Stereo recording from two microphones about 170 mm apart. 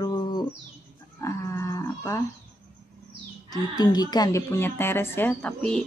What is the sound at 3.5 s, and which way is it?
A woman's voice, 25° left (ahead or behind).